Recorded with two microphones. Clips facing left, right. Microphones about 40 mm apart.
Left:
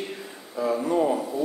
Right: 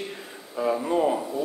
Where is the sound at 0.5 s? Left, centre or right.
Centre.